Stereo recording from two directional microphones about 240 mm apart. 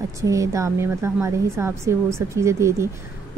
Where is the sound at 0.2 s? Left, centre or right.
Centre.